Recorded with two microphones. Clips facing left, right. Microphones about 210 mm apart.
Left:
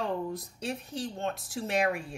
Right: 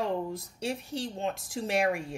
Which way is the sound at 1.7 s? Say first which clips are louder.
Right 1 dB; 10° right (ahead or behind).